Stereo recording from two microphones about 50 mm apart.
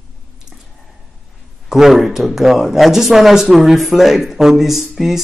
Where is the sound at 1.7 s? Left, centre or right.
Centre.